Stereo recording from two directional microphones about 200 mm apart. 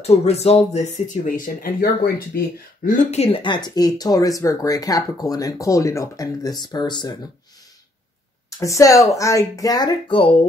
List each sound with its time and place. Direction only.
0.0 s speech: 30° left (ahead or behind)
8.5 s speech: 15° left (ahead or behind)